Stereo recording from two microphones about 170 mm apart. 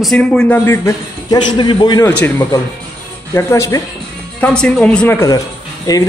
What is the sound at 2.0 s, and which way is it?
A man's voice, 10° left (ahead or behind).